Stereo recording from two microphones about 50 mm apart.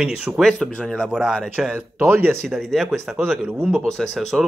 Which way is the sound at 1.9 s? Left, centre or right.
Right.